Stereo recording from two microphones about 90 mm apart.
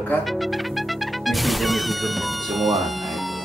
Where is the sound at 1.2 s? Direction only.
Centre (ahead or behind).